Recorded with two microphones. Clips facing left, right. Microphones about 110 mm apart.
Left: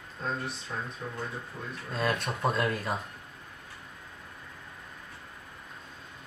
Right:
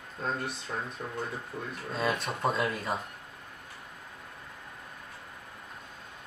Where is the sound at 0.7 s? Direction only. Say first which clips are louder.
Right 1 dB; 30° right (ahead or behind).